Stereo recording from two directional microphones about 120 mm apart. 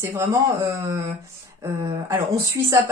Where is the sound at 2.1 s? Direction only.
20° right (ahead or behind).